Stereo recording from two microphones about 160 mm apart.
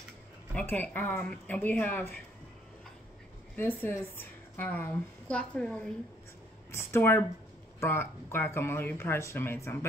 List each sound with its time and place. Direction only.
0.6 s speech: 10° left (ahead or behind)
3.5 s speech: 10° left (ahead or behind)